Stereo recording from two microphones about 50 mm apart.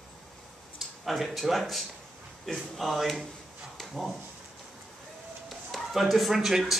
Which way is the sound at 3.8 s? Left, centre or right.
Centre.